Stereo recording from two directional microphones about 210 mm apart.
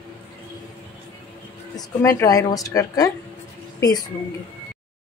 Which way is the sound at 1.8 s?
15° left (ahead or behind).